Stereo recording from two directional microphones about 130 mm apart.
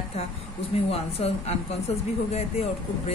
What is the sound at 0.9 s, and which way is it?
Speech, 50° left (ahead or behind).